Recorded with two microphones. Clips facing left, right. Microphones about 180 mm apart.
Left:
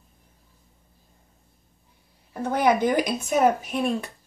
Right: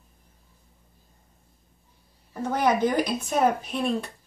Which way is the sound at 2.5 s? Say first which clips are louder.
Left 2 dB; 15° left (ahead or behind).